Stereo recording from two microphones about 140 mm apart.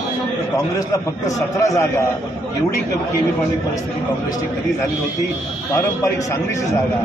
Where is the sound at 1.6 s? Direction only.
25° left (ahead or behind).